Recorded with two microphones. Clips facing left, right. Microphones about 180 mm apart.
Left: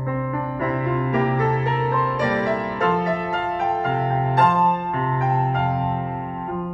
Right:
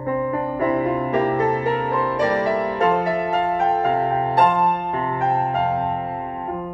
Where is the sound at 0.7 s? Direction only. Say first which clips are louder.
Right 1 dB; 30° right (ahead or behind).